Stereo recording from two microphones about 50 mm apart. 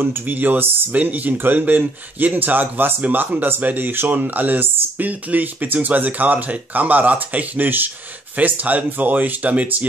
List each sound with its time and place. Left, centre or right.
0.0 s speech: right